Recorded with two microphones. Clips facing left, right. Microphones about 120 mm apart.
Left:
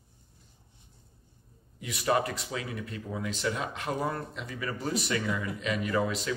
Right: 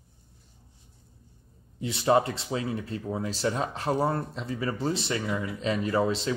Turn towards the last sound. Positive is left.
turn(degrees=-30)  # may be behind; listen again after turning